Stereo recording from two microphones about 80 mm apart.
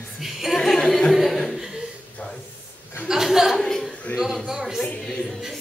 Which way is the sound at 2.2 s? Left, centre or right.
Centre.